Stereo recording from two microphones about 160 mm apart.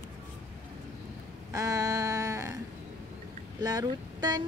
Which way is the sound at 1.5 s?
20° right (ahead or behind).